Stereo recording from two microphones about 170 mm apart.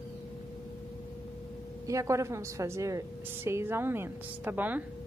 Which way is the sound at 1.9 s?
20° right (ahead or behind).